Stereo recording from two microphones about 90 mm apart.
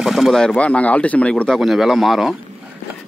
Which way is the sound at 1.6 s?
5° right (ahead or behind).